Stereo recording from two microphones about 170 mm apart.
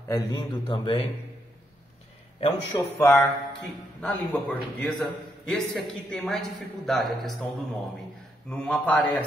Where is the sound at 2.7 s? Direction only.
25° left (ahead or behind).